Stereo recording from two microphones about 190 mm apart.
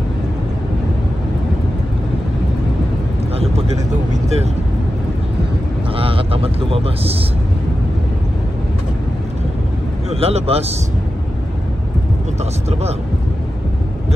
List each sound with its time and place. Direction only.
5.9 s speech: 30° right (ahead or behind)
10.0 s a man's voice: 35° right (ahead or behind)